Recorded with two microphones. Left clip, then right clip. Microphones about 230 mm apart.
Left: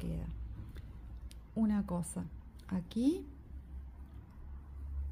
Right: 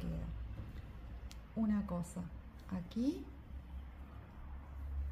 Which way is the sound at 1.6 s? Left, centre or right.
Left.